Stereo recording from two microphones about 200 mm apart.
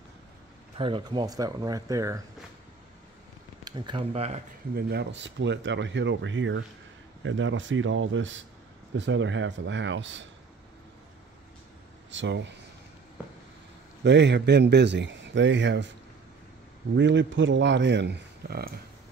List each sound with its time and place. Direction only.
0.7 s speech: 25° right (ahead or behind)
3.6 s speech: 20° right (ahead or behind)
4.7 s a man's voice: 55° right (ahead or behind)
12.1 s a man's voice: 65° right (ahead or behind)
14.0 s a man's voice: 60° right (ahead or behind)
16.9 s a man's voice: 65° right (ahead or behind)